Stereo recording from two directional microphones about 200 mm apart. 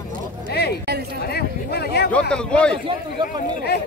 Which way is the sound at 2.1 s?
5° left (ahead or behind).